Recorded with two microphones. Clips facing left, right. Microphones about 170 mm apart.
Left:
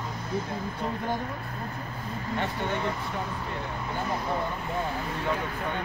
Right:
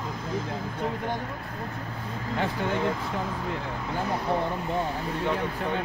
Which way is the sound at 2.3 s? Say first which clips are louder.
Right 3 dB; 90° right.